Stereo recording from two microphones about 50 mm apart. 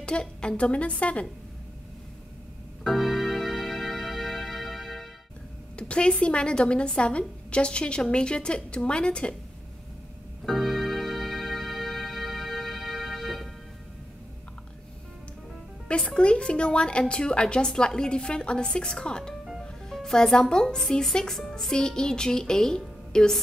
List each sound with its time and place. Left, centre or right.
0.0 s a woman's voice: centre
2.8 s music: centre
5.8 s a woman's voice: left
10.4 s music: centre
15.9 s a woman's voice: left